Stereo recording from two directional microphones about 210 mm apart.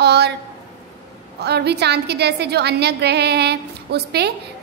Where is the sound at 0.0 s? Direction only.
50° right (ahead or behind).